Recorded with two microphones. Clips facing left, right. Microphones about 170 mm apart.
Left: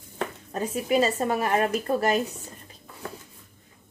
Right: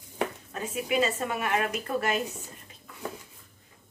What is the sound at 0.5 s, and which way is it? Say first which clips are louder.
A woman's voice: left 5 dB; 40° left (ahead or behind).